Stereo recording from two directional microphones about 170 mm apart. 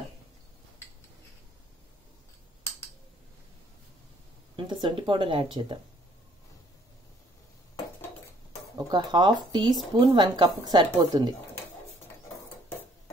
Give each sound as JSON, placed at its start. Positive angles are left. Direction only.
{"t": 4.6, "sound": "speech", "side_deg": -30}
{"t": 8.7, "sound": "speech", "side_deg": -25}